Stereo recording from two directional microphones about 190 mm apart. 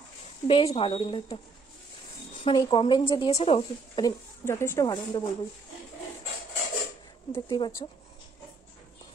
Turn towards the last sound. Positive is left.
turn(degrees=20)  # may be behind; listen again after turning